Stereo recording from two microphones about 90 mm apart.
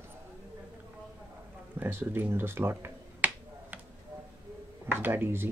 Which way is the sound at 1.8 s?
25° right (ahead or behind).